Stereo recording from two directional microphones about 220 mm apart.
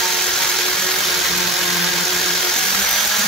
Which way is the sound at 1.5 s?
Centre (ahead or behind).